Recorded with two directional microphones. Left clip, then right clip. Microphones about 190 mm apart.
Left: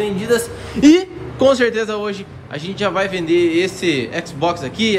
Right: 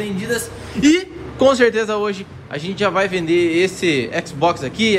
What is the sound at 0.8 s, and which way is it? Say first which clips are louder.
Speech: left 4 dB; 30° left (ahead or behind).